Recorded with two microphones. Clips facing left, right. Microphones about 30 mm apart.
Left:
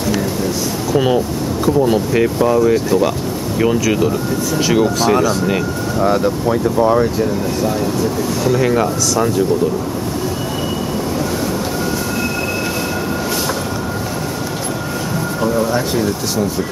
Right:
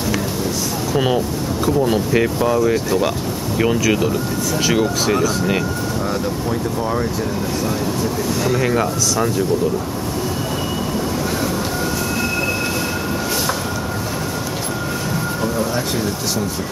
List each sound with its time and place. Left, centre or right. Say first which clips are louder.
0.9 s speech: left 3 dB; centre
5.9 s speech: left 10 dB; left
8.5 s speech: left 4 dB; centre
15.4 s a sound: left 6 dB; centre